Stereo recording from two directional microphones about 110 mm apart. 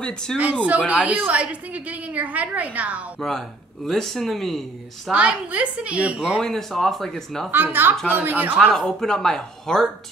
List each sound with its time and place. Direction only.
0.3 s speech: 5° left (ahead or behind)
0.7 s a woman's voice: 10° right (ahead or behind)
3.2 s speech: 5° left (ahead or behind)
5.1 s a woman's voice: 10° right (ahead or behind)
6.4 s speech: 5° left (ahead or behind)
7.5 s a woman's voice: 20° right (ahead or behind)
8.7 s speech: 5° left (ahead or behind)